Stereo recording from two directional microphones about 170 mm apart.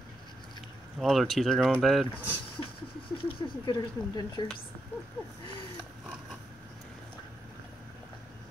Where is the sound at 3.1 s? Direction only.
30° left (ahead or behind).